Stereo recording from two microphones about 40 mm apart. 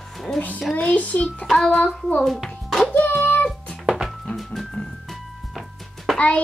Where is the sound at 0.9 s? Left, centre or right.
Left.